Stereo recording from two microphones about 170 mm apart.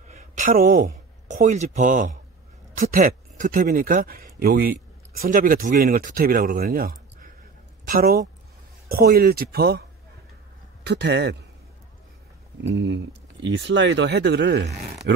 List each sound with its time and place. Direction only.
0.1 s speech: 50° right (ahead or behind); by 9.8 s 70° right (ahead or behind)
10.9 s speech: 85° right
12.6 s speech: 90° right